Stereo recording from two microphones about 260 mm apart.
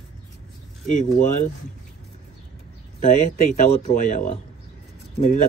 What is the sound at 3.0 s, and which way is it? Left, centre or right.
Speech, left.